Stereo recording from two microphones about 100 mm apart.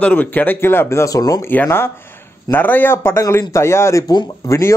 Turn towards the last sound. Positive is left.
turn(degrees=30)  # may be behind; listen again after turning